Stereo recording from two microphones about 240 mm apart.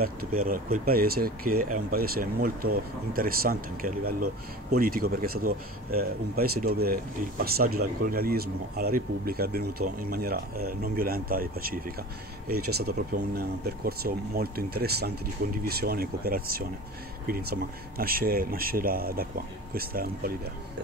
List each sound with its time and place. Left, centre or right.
0.0 s speech: right